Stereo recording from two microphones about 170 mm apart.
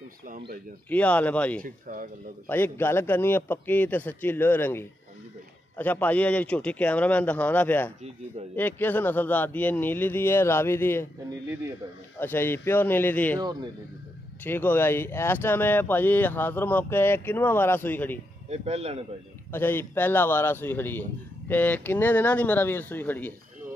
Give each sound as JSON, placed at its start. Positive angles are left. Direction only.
{"t": 0.8, "sound": "speech", "side_deg": 10}
{"t": 1.6, "sound": "speech", "side_deg": -55}
{"t": 2.4, "sound": "speech", "side_deg": 10}
{"t": 12.2, "sound": "speech", "side_deg": 10}
{"t": 14.4, "sound": "speech", "side_deg": 10}
{"t": 18.5, "sound": "speech", "side_deg": -40}
{"t": 19.5, "sound": "speech", "side_deg": 10}